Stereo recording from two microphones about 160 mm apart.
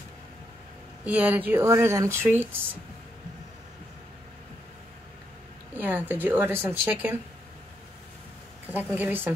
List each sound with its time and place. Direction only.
1.0 s speech: 10° right (ahead or behind)
5.8 s speech: 10° right (ahead or behind)
8.6 s speech: 10° right (ahead or behind)